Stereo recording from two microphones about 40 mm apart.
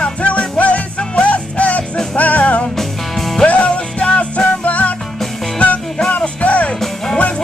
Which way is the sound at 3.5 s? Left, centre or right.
Left.